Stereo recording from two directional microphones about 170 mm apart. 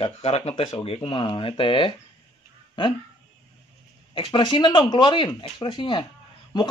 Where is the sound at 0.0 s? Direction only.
40° left (ahead or behind).